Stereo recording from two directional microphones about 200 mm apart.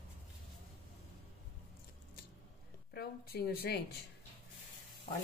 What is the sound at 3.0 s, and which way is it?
Speech, 50° left (ahead or behind).